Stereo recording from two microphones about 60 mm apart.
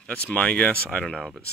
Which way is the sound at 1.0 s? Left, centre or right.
Centre.